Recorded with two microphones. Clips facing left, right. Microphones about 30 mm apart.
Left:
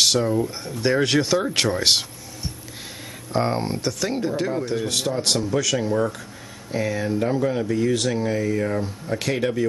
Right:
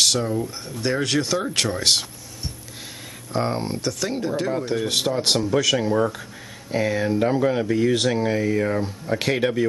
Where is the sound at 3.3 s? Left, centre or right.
Centre.